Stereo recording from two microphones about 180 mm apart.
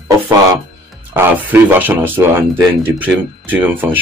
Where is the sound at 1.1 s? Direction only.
10° right (ahead or behind).